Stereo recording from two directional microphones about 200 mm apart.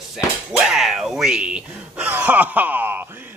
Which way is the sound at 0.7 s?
Centre (ahead or behind).